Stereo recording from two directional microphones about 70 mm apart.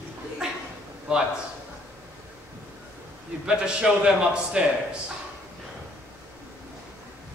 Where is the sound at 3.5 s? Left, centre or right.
Centre.